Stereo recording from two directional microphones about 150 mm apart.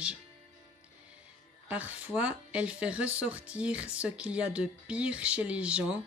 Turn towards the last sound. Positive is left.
turn(degrees=-10)  # may be behind; listen again after turning